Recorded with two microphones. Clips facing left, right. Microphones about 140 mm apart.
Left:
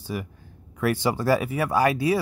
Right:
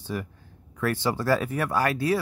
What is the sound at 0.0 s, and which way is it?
Speech, 10° left (ahead or behind).